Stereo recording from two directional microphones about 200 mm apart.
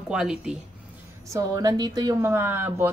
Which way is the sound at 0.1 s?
5° right (ahead or behind).